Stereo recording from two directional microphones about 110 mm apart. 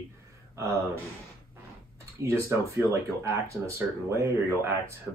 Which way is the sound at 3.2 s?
25° right (ahead or behind).